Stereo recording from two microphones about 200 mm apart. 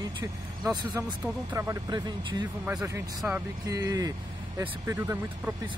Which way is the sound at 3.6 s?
15° right (ahead or behind).